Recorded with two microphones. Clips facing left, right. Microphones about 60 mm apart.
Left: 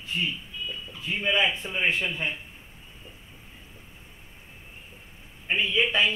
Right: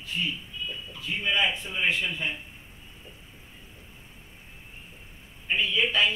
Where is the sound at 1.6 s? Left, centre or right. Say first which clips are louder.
Left 1 dB; left.